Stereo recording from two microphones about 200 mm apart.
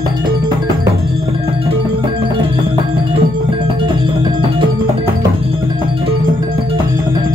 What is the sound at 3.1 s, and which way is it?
Music, 25° right (ahead or behind).